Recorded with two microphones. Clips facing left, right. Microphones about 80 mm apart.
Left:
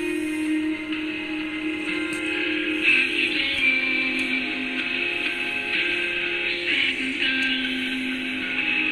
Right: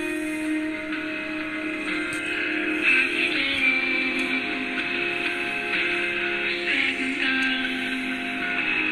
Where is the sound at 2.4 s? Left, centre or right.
Right.